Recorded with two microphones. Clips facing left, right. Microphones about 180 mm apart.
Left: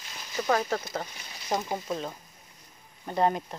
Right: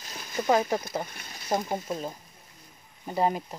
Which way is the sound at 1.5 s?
5° right (ahead or behind).